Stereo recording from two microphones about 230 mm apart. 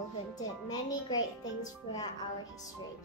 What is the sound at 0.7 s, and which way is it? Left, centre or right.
Speech, centre.